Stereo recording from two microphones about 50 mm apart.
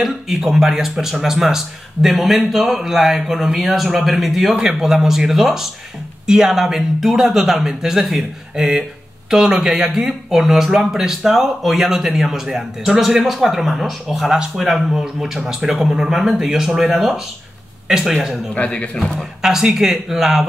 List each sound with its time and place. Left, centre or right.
0.0 s speech: centre
18.5 s speech: left
19.1 s speech: centre